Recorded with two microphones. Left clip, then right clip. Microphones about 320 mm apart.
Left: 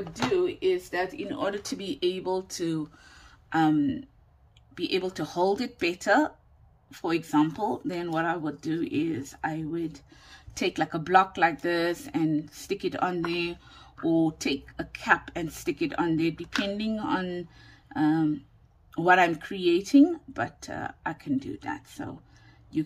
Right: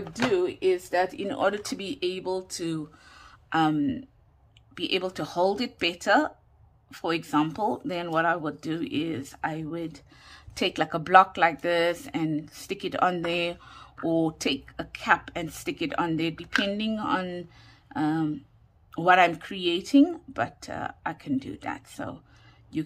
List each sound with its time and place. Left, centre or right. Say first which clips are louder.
0.0 s speech: right 1 dB; centre